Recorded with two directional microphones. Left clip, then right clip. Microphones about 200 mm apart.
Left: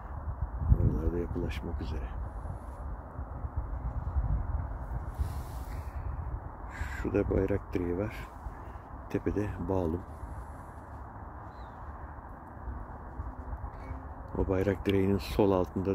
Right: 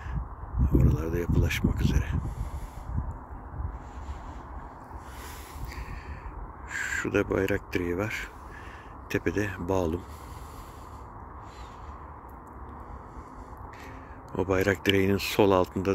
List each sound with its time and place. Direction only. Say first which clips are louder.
0.8 s speech: right 4 dB; centre (ahead or behind)
6.7 s speech: right 6 dB; centre (ahead or behind)
14.3 s speech: right 5 dB; centre (ahead or behind)